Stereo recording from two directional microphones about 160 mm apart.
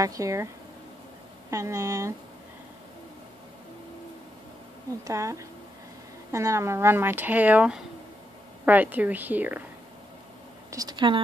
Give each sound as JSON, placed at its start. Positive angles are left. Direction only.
{"t": 0.0, "sound": "speech", "side_deg": -20}
{"t": 1.5, "sound": "speech", "side_deg": -20}
{"t": 5.0, "sound": "speech", "side_deg": -20}
{"t": 10.7, "sound": "speech", "side_deg": -25}